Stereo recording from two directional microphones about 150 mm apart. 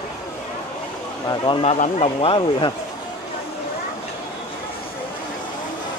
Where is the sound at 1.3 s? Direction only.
35° left (ahead or behind).